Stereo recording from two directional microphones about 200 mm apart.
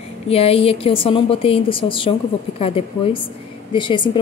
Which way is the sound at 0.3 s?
30° left (ahead or behind).